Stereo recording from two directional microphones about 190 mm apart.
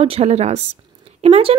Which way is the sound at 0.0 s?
30° right (ahead or behind).